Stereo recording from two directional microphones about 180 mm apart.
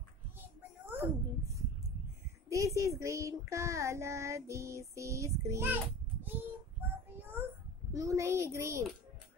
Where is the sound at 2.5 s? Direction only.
15° right (ahead or behind).